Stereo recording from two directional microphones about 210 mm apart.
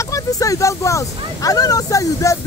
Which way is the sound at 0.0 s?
15° left (ahead or behind).